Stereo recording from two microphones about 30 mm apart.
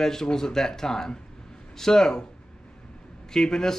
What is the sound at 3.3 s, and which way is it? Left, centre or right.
Speech, centre.